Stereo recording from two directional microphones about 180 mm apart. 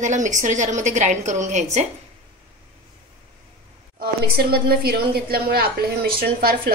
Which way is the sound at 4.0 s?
60° right (ahead or behind).